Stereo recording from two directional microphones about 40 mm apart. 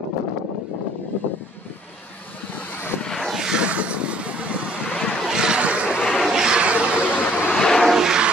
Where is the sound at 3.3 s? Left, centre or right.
Centre.